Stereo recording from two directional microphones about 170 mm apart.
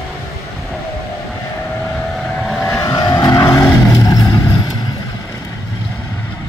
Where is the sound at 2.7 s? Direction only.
20° left (ahead or behind).